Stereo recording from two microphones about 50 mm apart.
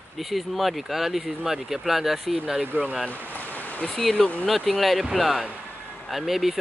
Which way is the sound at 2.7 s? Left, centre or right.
Right.